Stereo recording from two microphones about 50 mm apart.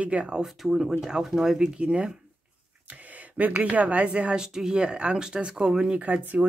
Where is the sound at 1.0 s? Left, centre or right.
Centre.